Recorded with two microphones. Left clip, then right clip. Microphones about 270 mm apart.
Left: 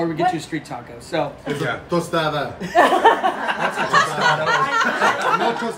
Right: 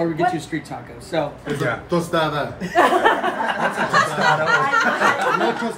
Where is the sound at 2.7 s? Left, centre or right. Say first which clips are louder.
Left 2 dB; left.